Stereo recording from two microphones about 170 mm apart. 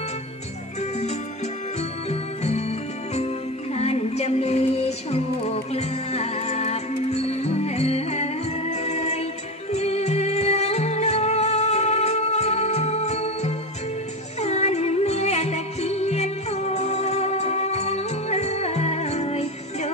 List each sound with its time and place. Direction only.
1.8 s music: 40° left (ahead or behind)
3.7 s music: 40° left (ahead or behind)